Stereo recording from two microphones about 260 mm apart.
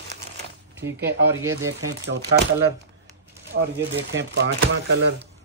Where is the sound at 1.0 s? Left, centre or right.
Centre.